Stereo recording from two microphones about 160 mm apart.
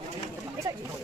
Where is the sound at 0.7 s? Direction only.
25° right (ahead or behind).